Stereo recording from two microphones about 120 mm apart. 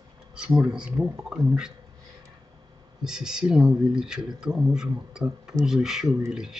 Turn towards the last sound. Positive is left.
turn(degrees=-5)  # may be behind; listen again after turning